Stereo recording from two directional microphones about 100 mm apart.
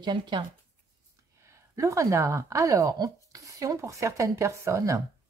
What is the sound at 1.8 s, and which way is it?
Speech, 30° right (ahead or behind).